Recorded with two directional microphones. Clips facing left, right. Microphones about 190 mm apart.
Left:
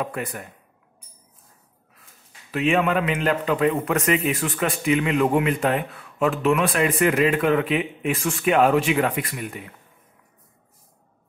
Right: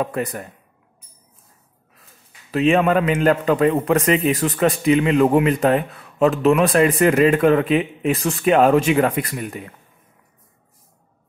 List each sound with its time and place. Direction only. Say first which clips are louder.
0.0 s a man's voice: right 5 dB; 40° right (ahead or behind)
2.5 s a man's voice: right 5 dB; 35° right (ahead or behind)